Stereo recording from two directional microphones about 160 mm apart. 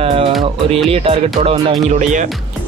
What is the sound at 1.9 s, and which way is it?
Speech, 50° right (ahead or behind).